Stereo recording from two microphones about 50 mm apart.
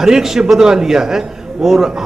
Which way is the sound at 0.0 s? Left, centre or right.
Centre.